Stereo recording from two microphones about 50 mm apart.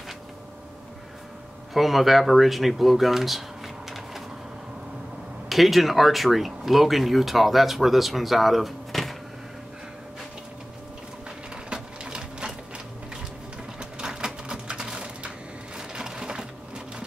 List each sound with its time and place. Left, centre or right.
1.7 s speech: centre
5.5 s speech: centre
11.7 s sewing machine: centre
13.7 s typewriter: centre
15.9 s sewing machine: centre